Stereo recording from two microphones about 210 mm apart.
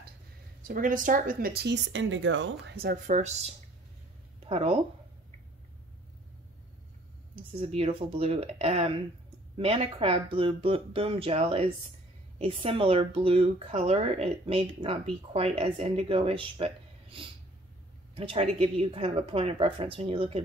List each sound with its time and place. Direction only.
0.7 s speech: 40° right (ahead or behind)
4.5 s a woman's voice: 30° right (ahead or behind)
7.6 s speech: 25° right (ahead or behind)